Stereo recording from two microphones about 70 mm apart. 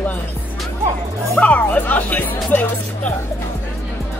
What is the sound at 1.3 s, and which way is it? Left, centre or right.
Speech, left.